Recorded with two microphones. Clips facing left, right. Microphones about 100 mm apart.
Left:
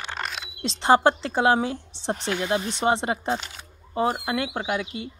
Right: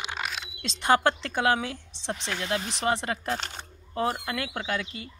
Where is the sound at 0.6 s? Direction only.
30° left (ahead or behind); by 5.1 s 15° left (ahead or behind).